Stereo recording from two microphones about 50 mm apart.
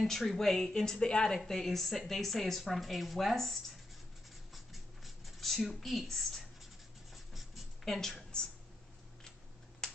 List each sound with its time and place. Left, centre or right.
0.0 s a woman's voice: centre
4.6 s a sound: centre
7.8 s a woman's voice: centre
8.3 s speech: centre
9.8 s finger snapping: centre